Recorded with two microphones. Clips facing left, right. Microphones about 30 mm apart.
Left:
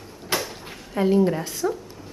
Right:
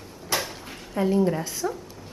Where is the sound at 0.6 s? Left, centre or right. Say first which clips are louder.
Left 3 dB; centre.